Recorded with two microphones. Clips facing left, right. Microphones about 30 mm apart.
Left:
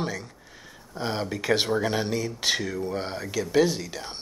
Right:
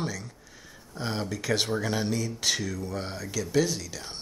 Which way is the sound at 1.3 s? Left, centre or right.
Left.